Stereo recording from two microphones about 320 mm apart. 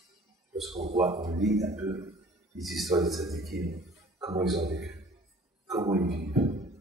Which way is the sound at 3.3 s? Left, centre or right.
Right.